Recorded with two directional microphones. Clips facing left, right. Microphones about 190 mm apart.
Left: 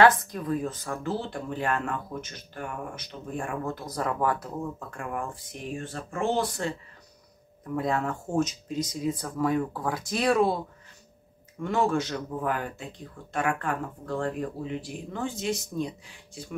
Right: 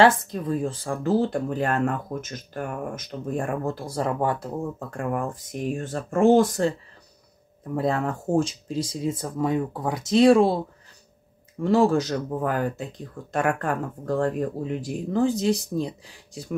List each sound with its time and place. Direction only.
0.0 s speech: 25° right (ahead or behind)
4.7 s speech: 40° right (ahead or behind)
7.7 s speech: 35° right (ahead or behind)
11.6 s speech: 35° right (ahead or behind)